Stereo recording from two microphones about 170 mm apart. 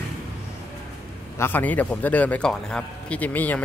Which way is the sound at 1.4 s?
10° left (ahead or behind).